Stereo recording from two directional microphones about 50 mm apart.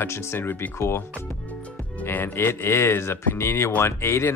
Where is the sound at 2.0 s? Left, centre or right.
Left.